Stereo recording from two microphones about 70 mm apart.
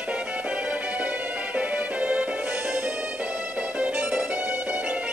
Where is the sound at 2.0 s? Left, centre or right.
Centre.